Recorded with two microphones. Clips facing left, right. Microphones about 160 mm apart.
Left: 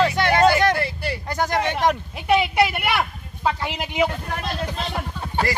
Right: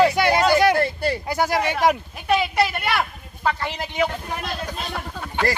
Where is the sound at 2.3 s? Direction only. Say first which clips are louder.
Left 2 dB; 15° left (ahead or behind).